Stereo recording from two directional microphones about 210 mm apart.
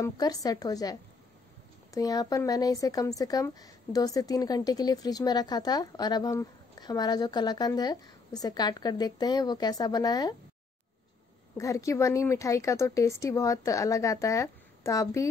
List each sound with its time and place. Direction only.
0.0 s speech: 15° left (ahead or behind)
2.0 s speech: 15° left (ahead or behind)
11.5 s speech: 15° left (ahead or behind)